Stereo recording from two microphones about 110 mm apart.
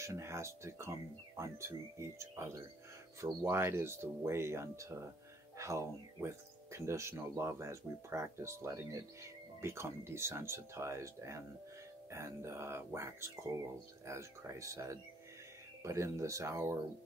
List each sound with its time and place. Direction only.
0.0 s speech: 25° right (ahead or behind)